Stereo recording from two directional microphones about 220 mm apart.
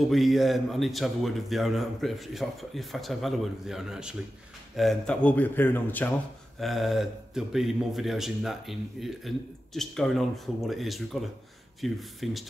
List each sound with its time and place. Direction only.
0.1 s a man's voice: centre (ahead or behind)